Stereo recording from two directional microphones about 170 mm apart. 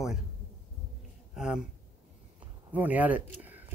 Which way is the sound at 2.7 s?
10° right (ahead or behind).